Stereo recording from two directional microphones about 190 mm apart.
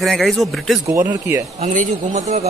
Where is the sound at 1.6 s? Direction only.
40° right (ahead or behind).